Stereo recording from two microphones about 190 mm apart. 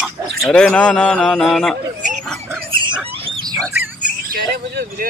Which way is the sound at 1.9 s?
40° right (ahead or behind).